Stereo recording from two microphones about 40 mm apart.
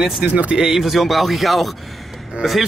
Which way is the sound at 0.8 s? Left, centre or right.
Centre.